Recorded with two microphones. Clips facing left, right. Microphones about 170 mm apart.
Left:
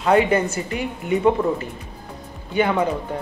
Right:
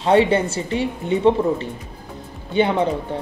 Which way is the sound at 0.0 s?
30° right (ahead or behind).